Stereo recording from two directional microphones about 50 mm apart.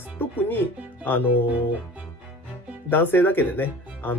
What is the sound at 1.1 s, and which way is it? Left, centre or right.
Speech, left.